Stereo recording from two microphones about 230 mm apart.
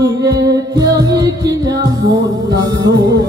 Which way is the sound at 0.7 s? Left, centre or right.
Centre.